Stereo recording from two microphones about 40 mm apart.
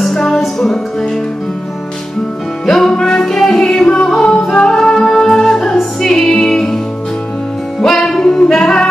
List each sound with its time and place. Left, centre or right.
0.0 s music: centre
2.6 s music: centre
7.8 s music: centre